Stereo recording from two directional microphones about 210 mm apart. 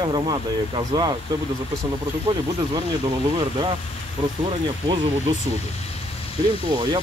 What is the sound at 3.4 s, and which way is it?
Speech, 20° right (ahead or behind).